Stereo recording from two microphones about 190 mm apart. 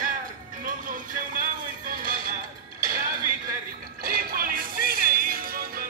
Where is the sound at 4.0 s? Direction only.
50° right (ahead or behind).